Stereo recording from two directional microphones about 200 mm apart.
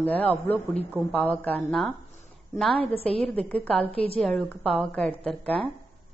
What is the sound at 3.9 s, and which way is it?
Speech, 30° left (ahead or behind).